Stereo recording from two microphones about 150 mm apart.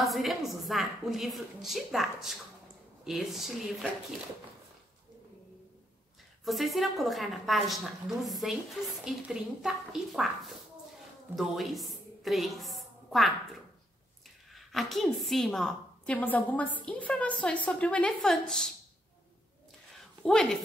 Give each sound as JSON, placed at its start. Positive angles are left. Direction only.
{"t": 0.0, "sound": "a woman's voice", "side_deg": 0}
{"t": 6.4, "sound": "a woman's voice", "side_deg": 0}
{"t": 20.2, "sound": "a woman's voice", "side_deg": 5}